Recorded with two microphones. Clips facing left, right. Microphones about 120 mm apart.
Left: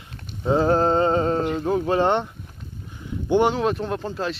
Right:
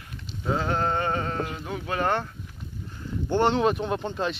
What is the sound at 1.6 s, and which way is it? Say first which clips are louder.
Speech: left 7 dB; 35° left (ahead or behind).